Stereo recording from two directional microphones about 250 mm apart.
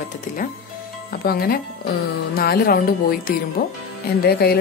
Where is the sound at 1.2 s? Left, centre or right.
Left.